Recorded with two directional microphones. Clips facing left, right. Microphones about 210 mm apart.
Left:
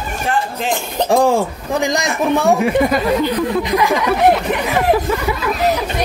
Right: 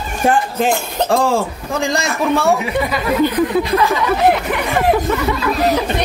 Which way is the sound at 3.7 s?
15° left (ahead or behind).